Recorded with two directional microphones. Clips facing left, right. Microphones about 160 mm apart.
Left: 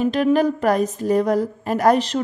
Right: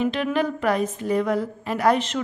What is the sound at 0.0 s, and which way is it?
A woman's voice, 40° left (ahead or behind).